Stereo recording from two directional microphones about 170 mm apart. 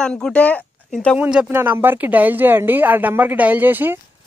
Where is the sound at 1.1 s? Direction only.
5° right (ahead or behind).